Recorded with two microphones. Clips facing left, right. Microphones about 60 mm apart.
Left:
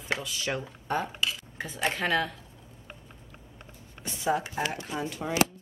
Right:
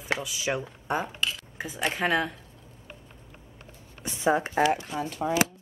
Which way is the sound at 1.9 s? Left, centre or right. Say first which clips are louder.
Right 3 dB; centre.